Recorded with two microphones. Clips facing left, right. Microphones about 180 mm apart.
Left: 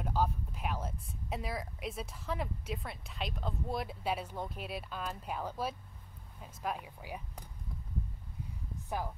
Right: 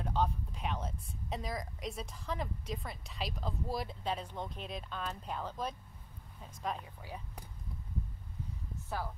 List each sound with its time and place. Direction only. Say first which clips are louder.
0.0 s speech: left 1 dB; 5° left (ahead or behind)
8.8 s speech: left 2 dB; 15° left (ahead or behind)